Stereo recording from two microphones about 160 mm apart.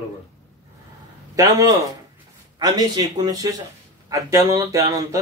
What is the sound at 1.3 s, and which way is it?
Speech, 20° right (ahead or behind).